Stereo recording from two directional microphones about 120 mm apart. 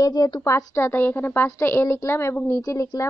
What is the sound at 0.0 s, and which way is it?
A woman's voice, 30° left (ahead or behind).